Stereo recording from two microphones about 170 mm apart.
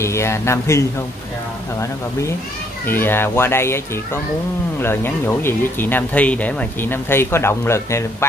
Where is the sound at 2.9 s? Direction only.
10° left (ahead or behind).